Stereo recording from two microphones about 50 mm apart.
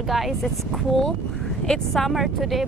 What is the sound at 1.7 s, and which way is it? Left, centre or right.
Speech, centre.